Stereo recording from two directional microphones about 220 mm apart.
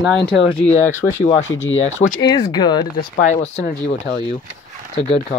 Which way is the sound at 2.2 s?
20° left (ahead or behind).